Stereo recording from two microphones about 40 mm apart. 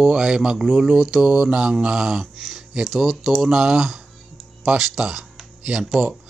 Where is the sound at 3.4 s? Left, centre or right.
Centre.